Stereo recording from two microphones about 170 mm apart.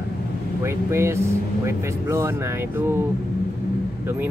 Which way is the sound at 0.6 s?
15° right (ahead or behind).